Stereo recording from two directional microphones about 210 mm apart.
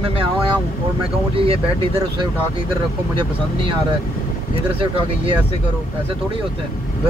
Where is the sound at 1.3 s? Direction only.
25° right (ahead or behind).